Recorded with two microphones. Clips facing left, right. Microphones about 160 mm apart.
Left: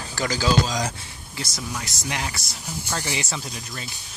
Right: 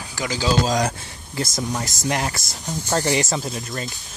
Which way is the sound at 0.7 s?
55° right (ahead or behind).